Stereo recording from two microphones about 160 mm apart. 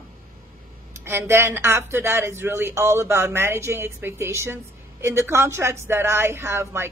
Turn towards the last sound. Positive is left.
turn(degrees=-15)  # may be behind; listen again after turning